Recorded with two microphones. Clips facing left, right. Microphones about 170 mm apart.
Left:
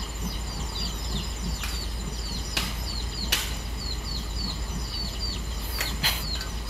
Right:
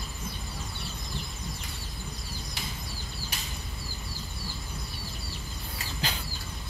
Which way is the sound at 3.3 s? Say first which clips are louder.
Left 5 dB; 80° left.